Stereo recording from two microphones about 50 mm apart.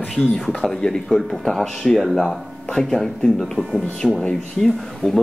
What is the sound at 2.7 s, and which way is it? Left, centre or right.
Speech, centre.